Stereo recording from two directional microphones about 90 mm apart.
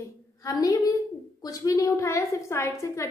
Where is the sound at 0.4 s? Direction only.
40° left (ahead or behind).